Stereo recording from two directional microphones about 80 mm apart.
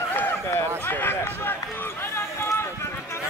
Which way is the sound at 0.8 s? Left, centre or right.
Left.